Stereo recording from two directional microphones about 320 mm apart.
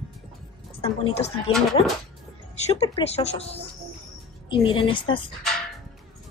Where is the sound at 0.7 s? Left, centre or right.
Centre.